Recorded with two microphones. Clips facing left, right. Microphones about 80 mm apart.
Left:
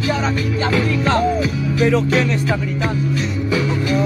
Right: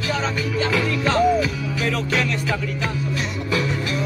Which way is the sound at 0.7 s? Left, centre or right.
Centre.